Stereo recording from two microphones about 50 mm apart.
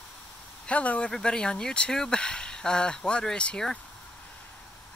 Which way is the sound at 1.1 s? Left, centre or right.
Centre.